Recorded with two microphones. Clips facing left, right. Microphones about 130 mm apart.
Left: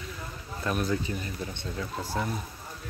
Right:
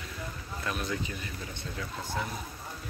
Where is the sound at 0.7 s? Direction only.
35° left (ahead or behind).